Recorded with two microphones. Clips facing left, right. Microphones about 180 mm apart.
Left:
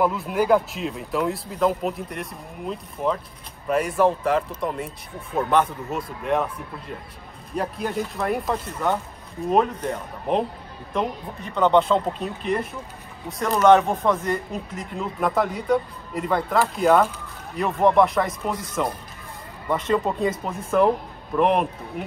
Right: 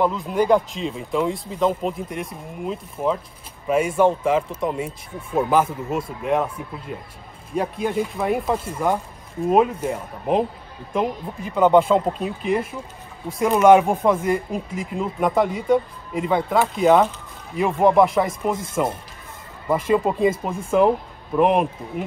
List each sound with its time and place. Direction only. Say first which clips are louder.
0.0 s speech: right 1 dB; 5° left (ahead or behind)
18.5 s speech: right 4 dB; 25° right (ahead or behind)
19.7 s speech: right 3 dB; 10° right (ahead or behind)